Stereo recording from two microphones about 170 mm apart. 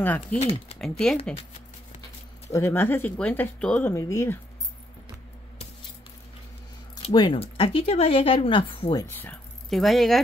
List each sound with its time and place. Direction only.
0.0 s speech: 10° left (ahead or behind)
2.5 s speech: 15° left (ahead or behind)
7.0 s speech: 30° left (ahead or behind)
9.1 s speech: 10° left (ahead or behind)
9.7 s speech: centre (ahead or behind)